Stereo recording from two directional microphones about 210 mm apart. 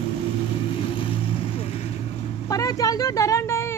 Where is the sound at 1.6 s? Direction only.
30° left (ahead or behind).